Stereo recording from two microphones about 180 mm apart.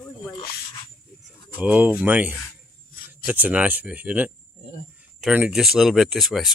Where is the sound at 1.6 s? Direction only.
10° right (ahead or behind).